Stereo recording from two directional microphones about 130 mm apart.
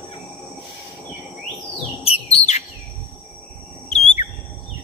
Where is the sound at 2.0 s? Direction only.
50° left (ahead or behind).